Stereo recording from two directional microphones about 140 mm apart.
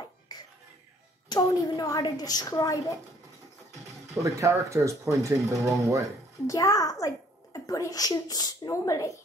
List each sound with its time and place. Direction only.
0.0 s music: 30° left (ahead or behind)
1.3 s a woman's voice: 25° left (ahead or behind)
4.1 s speech: 20° right (ahead or behind)
6.4 s a woman's voice: 25° left (ahead or behind)